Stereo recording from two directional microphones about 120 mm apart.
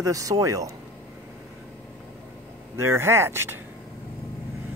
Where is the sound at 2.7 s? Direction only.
20° right (ahead or behind).